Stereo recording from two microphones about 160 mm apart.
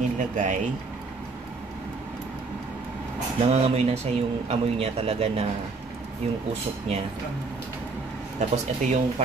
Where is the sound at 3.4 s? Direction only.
40° right (ahead or behind).